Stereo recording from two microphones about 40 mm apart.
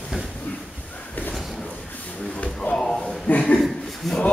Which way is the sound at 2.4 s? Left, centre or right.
Left.